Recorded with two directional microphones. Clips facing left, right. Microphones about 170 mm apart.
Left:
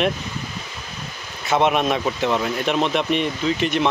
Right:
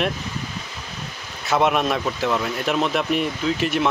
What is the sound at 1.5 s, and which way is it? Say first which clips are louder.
Speech: left 1 dB; centre (ahead or behind).